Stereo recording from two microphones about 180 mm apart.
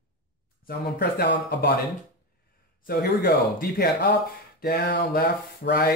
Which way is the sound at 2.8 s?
55° left (ahead or behind).